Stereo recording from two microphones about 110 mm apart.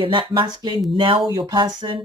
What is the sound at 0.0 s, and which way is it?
Speech, 45° right (ahead or behind).